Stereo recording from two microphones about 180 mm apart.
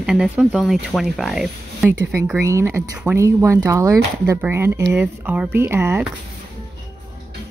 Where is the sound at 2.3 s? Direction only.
15° right (ahead or behind).